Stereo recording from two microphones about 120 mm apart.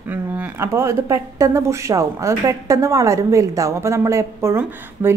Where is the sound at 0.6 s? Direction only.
25° right (ahead or behind).